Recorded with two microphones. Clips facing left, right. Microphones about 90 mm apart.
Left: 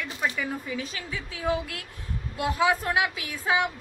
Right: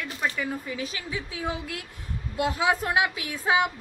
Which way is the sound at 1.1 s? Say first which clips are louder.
Left 5 dB; 15° right (ahead or behind).